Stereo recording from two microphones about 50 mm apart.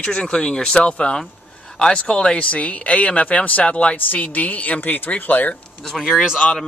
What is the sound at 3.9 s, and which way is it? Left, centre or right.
A woman's voice, left.